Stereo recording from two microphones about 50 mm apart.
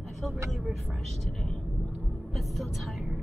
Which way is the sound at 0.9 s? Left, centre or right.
Centre.